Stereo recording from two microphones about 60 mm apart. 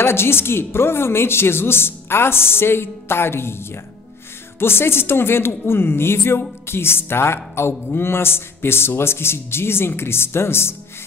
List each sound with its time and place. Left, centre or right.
0.0 s speech: left